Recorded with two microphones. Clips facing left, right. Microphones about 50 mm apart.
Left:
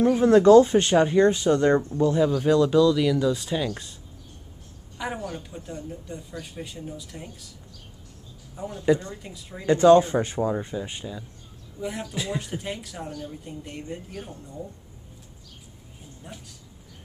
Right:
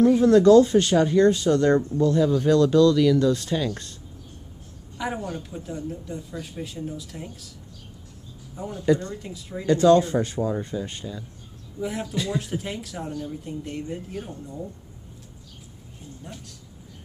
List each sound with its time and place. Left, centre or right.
0.0 s speech: left; by 3.9 s centre
4.9 s a sound: centre
5.3 s speech: centre
8.5 s speech: centre
8.8 s speech: centre
9.7 s speech: left
10.5 s speech: centre
11.8 s speech: centre